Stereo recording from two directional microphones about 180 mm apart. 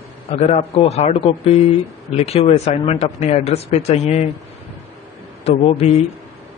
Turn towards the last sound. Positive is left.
turn(degrees=35)  # may be behind; listen again after turning